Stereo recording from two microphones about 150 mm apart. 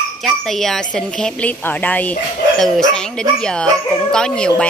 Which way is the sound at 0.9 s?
5° left (ahead or behind).